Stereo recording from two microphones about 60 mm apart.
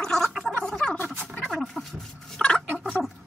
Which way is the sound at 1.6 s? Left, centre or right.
Centre.